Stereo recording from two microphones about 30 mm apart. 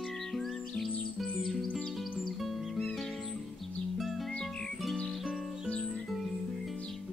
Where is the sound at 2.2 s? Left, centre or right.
Centre.